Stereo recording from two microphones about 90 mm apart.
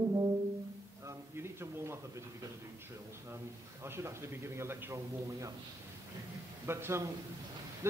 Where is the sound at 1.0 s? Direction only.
30° right (ahead or behind).